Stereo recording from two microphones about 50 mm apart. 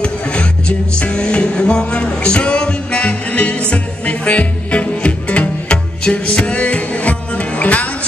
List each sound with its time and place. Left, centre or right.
0.0 s music: left